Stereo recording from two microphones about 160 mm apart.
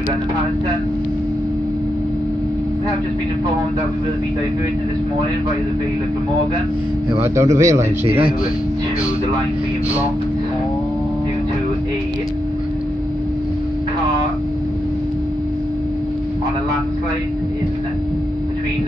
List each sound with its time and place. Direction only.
7.3 s speech: 20° right (ahead or behind)